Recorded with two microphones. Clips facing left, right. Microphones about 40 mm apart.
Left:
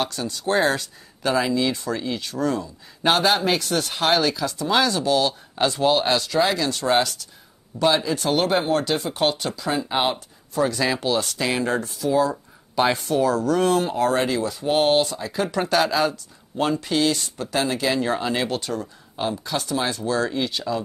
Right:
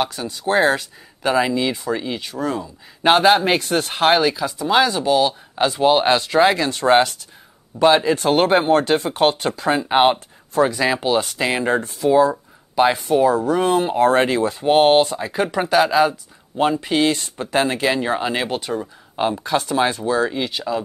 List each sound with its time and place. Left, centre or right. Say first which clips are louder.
0.0 s speech: right 3 dB; centre; by 10.7 s right
10.7 s speech: right 4 dB; centre
12.7 s speech: right 4 dB; centre
15.6 s speech: right 5 dB; centre; by 20.1 s right
20.1 s speech: right 3 dB; centre